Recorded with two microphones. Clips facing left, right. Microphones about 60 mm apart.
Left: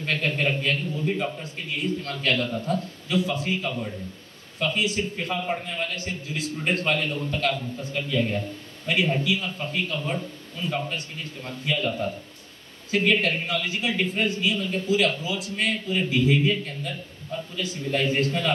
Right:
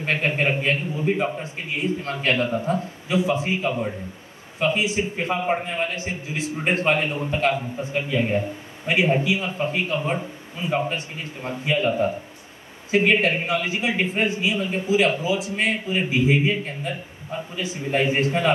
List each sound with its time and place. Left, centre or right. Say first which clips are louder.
0.0 s a man's voice: right 3 dB; right
5.1 s a man's voice: right 5 dB; right
5.9 s a man's voice: right 3 dB; centre